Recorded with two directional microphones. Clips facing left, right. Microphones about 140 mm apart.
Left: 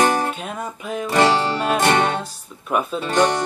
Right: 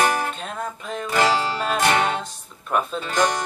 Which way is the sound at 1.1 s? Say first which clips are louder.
Left 3 dB; 25° left (ahead or behind).